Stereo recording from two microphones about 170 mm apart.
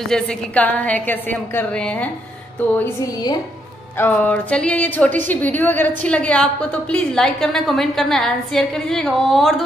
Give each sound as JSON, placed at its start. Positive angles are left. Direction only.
{"t": 0.1, "sound": "a woman's voice", "side_deg": 5}
{"t": 2.8, "sound": "a woman's voice", "side_deg": 20}
{"t": 4.0, "sound": "a woman's voice", "side_deg": 5}